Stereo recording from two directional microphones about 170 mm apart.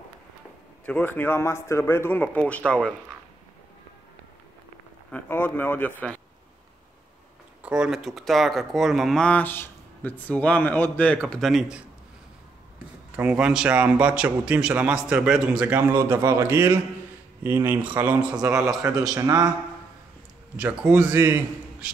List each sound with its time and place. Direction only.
0.8 s speech: 10° left (ahead or behind)
5.1 s speech: 10° left (ahead or behind)
7.6 s speech: 5° right (ahead or behind)
13.1 s a man's voice: 10° right (ahead or behind)
19.1 s a man's voice: 20° right (ahead or behind)
20.5 s a man's voice: 10° right (ahead or behind)